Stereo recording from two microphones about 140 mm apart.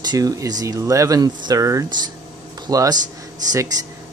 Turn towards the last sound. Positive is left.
turn(degrees=-25)  # may be behind; listen again after turning